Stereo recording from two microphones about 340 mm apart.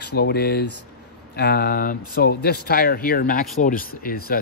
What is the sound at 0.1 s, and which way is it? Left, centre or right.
Speech, left.